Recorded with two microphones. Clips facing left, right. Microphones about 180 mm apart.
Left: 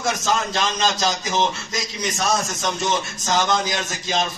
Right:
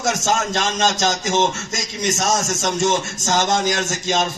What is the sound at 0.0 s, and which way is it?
Speech, 45° right (ahead or behind).